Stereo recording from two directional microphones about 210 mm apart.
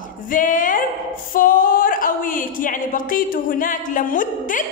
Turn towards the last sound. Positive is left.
turn(degrees=40)  # may be behind; listen again after turning